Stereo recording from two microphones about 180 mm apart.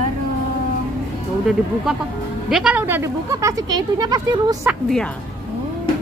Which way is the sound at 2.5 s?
5° right (ahead or behind).